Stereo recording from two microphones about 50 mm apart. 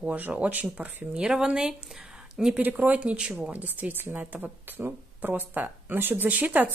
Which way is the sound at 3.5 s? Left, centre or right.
Right.